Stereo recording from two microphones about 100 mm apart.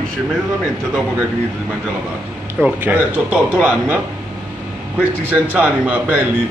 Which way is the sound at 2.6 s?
20° right (ahead or behind).